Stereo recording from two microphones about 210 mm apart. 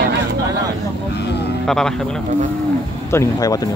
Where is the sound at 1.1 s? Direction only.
50° left (ahead or behind).